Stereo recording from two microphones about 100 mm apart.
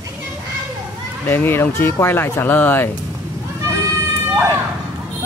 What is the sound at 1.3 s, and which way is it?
Speech, 20° left (ahead or behind).